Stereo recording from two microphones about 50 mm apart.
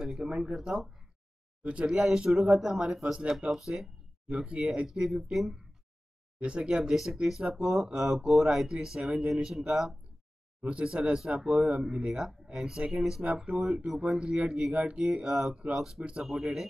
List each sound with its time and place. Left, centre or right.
0.0 s speech: centre
1.6 s speech: right
3.5 s speech: centre
4.3 s speech: right
4.8 s speech: centre
6.4 s speech: right
10.6 s speech: right
12.1 s speech: centre
16.0 s speech: right
16.3 s speech: centre